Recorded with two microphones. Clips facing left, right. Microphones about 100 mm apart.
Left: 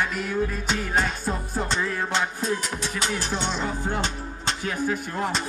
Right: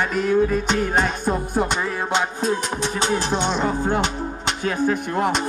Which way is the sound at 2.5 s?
20° right (ahead or behind).